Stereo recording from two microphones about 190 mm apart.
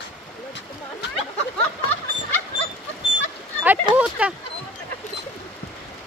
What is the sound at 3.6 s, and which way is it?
Speech, 5° right (ahead or behind).